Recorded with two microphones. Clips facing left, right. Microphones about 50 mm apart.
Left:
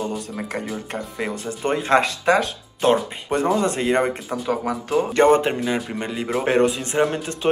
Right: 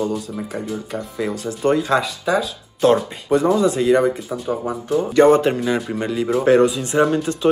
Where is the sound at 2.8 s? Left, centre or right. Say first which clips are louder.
Right 3 dB; left.